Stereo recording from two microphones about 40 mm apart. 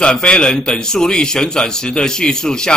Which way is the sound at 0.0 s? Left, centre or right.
Left.